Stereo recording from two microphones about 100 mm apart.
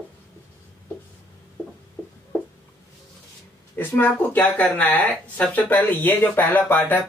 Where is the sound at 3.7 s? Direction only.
20° left (ahead or behind).